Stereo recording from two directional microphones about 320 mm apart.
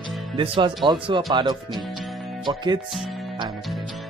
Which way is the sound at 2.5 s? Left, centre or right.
Centre.